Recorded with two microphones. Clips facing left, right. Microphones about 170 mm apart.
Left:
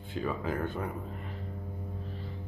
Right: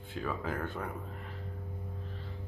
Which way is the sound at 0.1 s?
Centre (ahead or behind).